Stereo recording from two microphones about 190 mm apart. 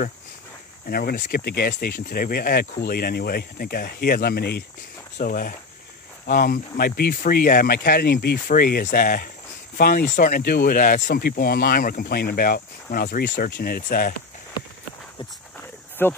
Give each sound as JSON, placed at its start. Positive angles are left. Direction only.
{"t": 0.8, "sound": "speech", "side_deg": 50}
{"t": 16.0, "sound": "speech", "side_deg": 10}